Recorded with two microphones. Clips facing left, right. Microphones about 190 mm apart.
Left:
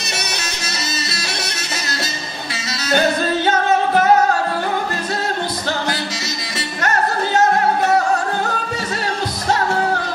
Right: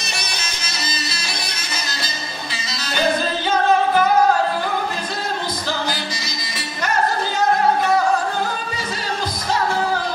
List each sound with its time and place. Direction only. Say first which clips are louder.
2.5 s music: left 8 dB; 70° left (ahead or behind)